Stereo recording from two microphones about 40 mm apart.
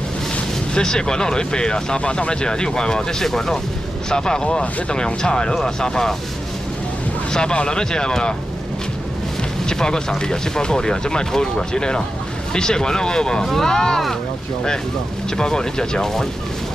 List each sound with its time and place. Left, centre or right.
0.7 s speech: centre
7.3 s speech: left
9.7 s speech: centre
15.3 s speech: centre